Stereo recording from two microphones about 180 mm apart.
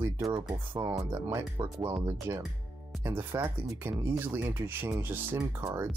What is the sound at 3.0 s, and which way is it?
Speech, 15° right (ahead or behind).